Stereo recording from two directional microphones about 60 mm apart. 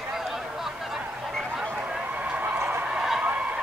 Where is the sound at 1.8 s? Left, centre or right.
Right.